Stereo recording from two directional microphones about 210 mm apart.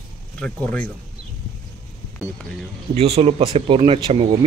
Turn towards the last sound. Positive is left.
turn(degrees=-25)  # may be behind; listen again after turning